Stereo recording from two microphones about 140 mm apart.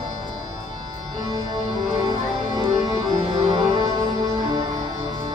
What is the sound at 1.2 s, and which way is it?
Music, 30° right (ahead or behind).